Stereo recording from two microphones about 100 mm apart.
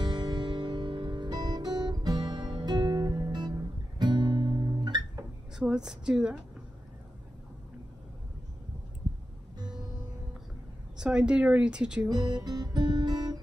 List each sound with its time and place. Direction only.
0.0 s music: 50° right (ahead or behind)
4.0 s guitar: 45° right (ahead or behind)
5.6 s speech: 10° right (ahead or behind)
11.0 s speech: 10° right (ahead or behind)
12.1 s guitar: 45° right (ahead or behind)